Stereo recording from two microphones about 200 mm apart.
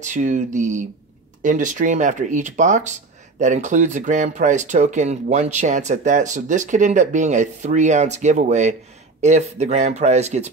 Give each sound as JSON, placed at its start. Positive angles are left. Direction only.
{"t": 0.0, "sound": "speech", "side_deg": -40}